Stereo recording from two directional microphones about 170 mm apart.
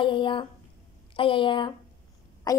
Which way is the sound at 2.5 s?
20° left (ahead or behind).